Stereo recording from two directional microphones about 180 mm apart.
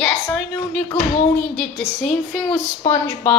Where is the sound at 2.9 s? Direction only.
15° left (ahead or behind).